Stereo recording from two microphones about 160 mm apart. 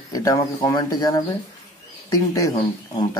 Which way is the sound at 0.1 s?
25° left (ahead or behind).